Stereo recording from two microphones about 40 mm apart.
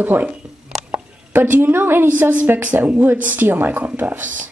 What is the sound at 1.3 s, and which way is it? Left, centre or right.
Speech, right.